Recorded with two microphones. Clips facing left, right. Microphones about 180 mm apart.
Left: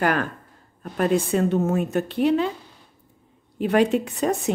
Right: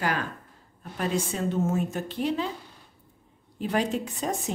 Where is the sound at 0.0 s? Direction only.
55° left (ahead or behind).